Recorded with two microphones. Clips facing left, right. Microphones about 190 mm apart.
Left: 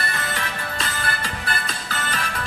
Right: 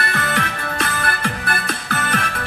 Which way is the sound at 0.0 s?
65° right (ahead or behind).